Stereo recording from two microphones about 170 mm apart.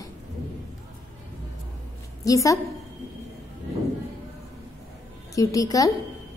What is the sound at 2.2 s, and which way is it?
Speech, 20° left (ahead or behind).